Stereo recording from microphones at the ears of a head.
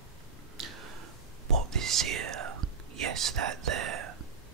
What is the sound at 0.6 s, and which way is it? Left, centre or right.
Whispering, right.